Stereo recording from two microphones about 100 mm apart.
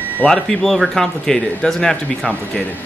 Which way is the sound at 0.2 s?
5° left (ahead or behind).